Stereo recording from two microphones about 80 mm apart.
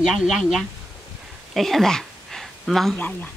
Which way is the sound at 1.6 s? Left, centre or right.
Centre.